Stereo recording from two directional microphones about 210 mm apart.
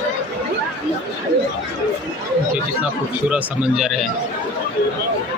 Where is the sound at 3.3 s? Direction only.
5° right (ahead or behind).